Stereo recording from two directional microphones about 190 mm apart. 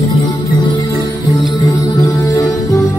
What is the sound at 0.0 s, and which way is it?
Music, 20° left (ahead or behind).